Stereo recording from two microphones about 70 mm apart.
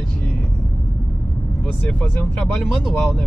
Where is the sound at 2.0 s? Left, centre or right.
Centre.